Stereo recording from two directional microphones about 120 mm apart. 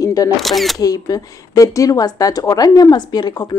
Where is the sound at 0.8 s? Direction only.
30° left (ahead or behind).